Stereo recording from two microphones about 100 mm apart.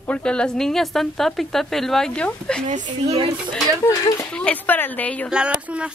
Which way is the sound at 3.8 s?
30° left (ahead or behind).